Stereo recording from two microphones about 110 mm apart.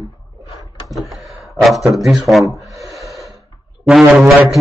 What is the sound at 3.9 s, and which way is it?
Speech, 5° right (ahead or behind).